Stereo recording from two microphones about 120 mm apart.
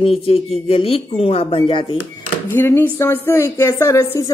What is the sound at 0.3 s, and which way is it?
Speech, 55° left (ahead or behind).